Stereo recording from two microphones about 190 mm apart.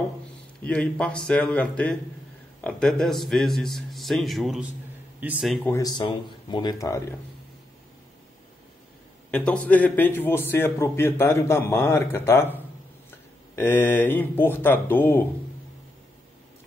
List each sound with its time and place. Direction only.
0.7 s a man's voice: 5° left (ahead or behind)
5.6 s speech: 15° left (ahead or behind)
9.3 s a man's voice: 5° left (ahead or behind)
13.6 s a man's voice: 10° left (ahead or behind)